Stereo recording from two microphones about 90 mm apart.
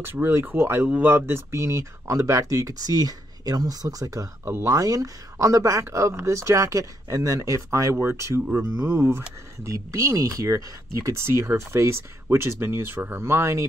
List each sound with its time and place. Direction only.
0.0 s speech: 25° right (ahead or behind)
4.5 s speech: 25° right (ahead or behind)
4.7 s speech: 40° right (ahead or behind)
9.6 s speech: 40° right (ahead or behind)